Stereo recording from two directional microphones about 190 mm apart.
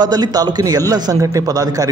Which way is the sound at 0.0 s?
20° right (ahead or behind).